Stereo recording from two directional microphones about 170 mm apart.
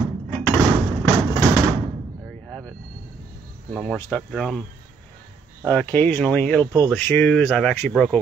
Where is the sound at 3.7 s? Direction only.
5° left (ahead or behind).